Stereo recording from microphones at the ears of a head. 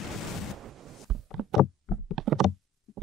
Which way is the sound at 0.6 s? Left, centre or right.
Right.